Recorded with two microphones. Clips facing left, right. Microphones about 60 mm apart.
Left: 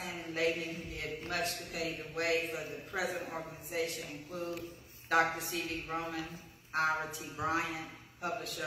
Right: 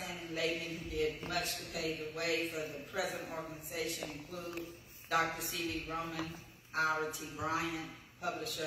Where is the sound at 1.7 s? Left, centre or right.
Left.